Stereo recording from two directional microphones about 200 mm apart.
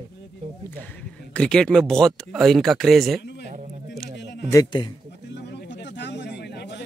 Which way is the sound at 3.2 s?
55° left (ahead or behind).